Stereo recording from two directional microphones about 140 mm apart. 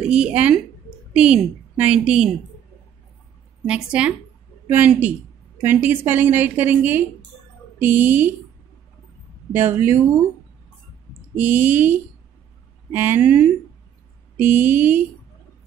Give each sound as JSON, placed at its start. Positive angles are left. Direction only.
{"t": 0.1, "sound": "a woman's voice", "side_deg": -10}
{"t": 3.6, "sound": "a woman's voice", "side_deg": -10}
{"t": 9.5, "sound": "a woman's voice", "side_deg": -15}
{"t": 11.3, "sound": "a woman's voice", "side_deg": -15}